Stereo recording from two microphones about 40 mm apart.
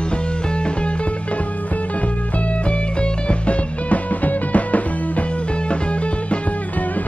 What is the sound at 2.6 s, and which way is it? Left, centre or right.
Music, left.